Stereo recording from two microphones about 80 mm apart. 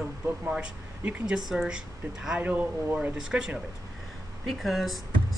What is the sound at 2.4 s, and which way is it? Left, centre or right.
Speech, right.